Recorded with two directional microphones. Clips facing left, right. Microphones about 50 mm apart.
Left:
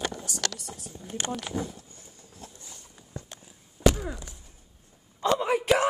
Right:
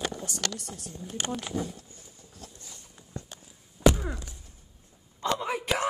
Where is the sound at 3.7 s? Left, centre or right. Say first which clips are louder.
Right 1 dB; centre.